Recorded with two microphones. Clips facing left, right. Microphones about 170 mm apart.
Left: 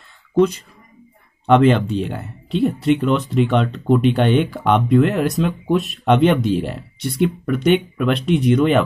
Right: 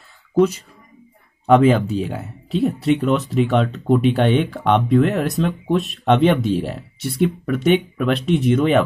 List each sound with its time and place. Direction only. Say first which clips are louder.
0.3 s speech: even; 5° right (ahead or behind)